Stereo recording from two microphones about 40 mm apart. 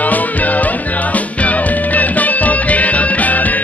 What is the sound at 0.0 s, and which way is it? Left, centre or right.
Music, left.